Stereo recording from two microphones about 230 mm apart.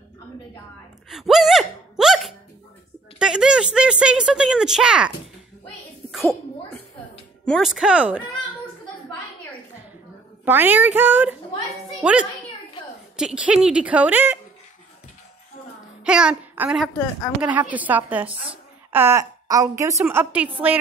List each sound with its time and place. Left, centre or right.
1.0 s gasp: centre
3.2 s speech: centre
6.1 s a sound: centre
7.4 s speech: centre
10.4 s a woman's voice: centre
16.0 s a woman's voice: centre